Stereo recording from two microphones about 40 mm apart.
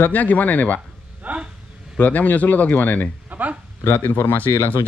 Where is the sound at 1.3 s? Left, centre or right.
Right.